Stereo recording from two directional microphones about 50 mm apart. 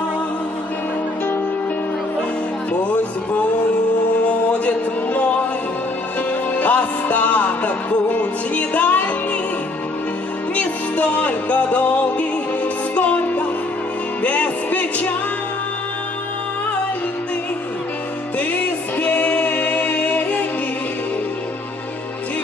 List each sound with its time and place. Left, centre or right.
2.7 s music: left
6.5 s music: left
10.5 s music: left
18.4 s music: left